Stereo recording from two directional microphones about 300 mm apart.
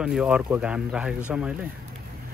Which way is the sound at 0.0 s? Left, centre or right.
Centre.